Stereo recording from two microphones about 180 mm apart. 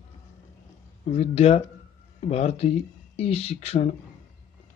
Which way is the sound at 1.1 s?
35° left (ahead or behind).